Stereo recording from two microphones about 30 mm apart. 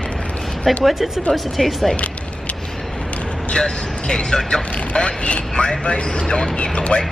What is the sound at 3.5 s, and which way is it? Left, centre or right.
Speech, left.